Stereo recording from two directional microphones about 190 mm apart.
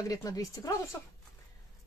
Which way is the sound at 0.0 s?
20° left (ahead or behind).